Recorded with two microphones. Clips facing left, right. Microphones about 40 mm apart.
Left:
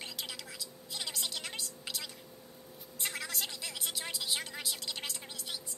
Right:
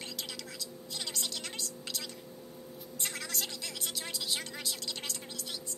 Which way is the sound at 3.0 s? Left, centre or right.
Centre.